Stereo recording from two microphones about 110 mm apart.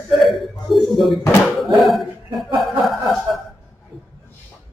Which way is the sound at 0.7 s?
Centre (ahead or behind).